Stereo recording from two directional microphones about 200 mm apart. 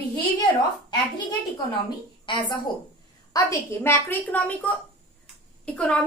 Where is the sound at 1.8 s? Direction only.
20° left (ahead or behind).